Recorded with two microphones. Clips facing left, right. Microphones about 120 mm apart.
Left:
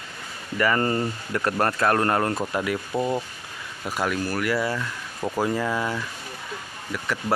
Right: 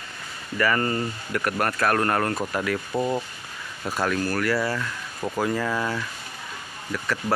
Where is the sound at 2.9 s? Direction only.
5° left (ahead or behind).